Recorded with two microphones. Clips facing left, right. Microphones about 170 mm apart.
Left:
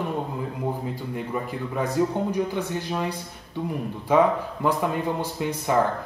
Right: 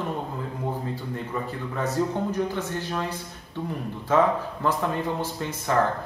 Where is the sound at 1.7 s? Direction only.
15° left (ahead or behind).